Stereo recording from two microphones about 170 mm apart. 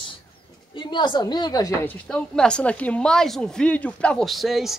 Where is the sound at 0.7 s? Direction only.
25° left (ahead or behind).